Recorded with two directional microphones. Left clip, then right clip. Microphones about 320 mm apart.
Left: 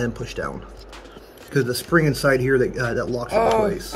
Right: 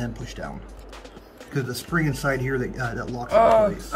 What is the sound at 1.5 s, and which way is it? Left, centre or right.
Speech, centre.